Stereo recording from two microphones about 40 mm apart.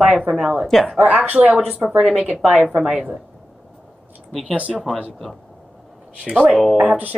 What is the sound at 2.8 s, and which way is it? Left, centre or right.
Speech, centre.